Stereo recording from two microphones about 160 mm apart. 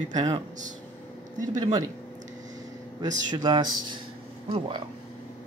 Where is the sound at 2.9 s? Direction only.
30° right (ahead or behind).